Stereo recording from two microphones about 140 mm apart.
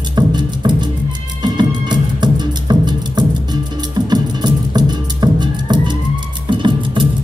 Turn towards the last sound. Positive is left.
turn(degrees=-35)  # may be behind; listen again after turning